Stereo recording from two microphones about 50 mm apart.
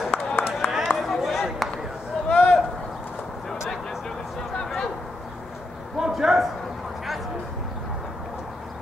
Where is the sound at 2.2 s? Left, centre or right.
Left.